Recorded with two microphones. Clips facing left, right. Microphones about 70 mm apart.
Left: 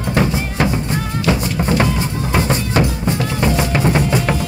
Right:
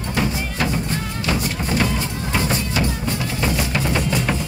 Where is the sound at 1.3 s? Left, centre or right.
Left.